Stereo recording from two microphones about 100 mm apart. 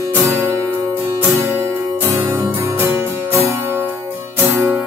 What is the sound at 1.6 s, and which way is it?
Music, 25° right (ahead or behind).